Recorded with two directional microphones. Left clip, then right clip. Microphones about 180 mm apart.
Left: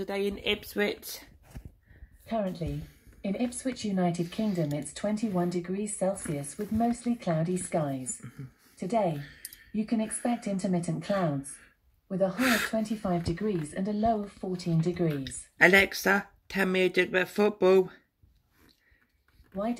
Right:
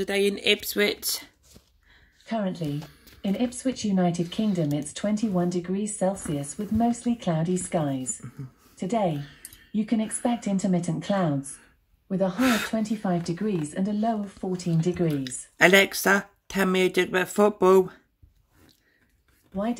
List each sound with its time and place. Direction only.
0.0 s speech: 25° right (ahead or behind)
0.7 s a woman's voice: 15° right (ahead or behind)
12.4 s a woman's voice: 5° right (ahead or behind)
19.5 s speech: 20° right (ahead or behind)